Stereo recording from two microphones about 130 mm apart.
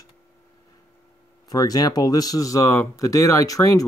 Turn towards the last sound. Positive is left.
turn(degrees=25)  # may be behind; listen again after turning